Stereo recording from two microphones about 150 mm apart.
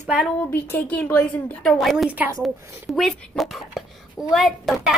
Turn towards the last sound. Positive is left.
turn(degrees=0)  # may be behind; listen again after turning